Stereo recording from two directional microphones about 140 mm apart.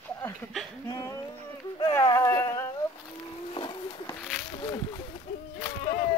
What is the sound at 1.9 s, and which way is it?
Speech, 20° left (ahead or behind).